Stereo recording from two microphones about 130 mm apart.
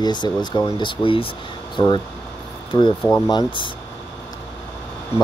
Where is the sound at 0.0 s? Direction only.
35° left (ahead or behind).